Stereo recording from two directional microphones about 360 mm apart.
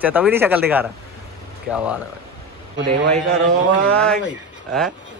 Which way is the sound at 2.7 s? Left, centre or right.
Right.